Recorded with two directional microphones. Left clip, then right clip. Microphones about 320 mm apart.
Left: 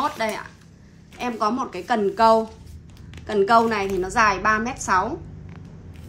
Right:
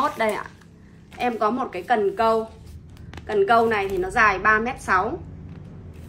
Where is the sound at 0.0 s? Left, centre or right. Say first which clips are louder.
Right 2 dB; centre.